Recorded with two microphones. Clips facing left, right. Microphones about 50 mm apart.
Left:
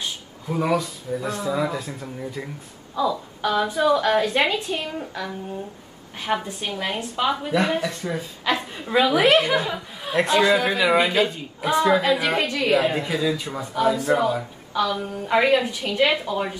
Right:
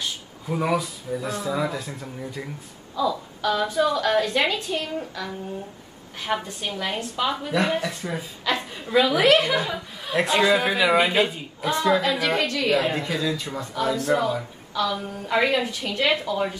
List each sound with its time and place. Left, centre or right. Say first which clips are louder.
0.5 s a woman's voice: left 1 dB; centre
8.5 s a woman's voice: left 2 dB; centre
9.2 s a woman's voice: even; left
9.5 s speech: left 2 dB; centre
11.6 s a woman's voice: left 2 dB; centre